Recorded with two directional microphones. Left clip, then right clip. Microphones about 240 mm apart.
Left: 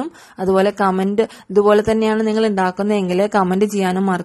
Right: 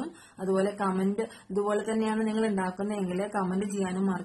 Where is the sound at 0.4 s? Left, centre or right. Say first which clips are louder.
Left 13 dB; left.